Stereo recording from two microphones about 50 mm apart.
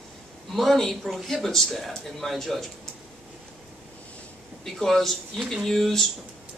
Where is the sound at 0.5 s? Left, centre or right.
Centre.